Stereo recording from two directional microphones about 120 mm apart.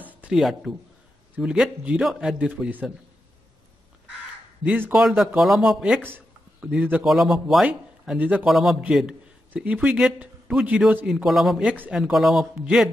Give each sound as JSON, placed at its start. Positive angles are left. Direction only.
{"t": 0.0, "sound": "a sound", "side_deg": -10}
{"t": 0.4, "sound": "a man's voice", "side_deg": 0}
{"t": 4.6, "sound": "a man's voice", "side_deg": -15}
{"t": 4.9, "sound": "speech", "side_deg": 0}
{"t": 6.0, "sound": "a sound", "side_deg": -15}
{"t": 6.7, "sound": "a man's voice", "side_deg": -10}
{"t": 11.2, "sound": "speech", "side_deg": 0}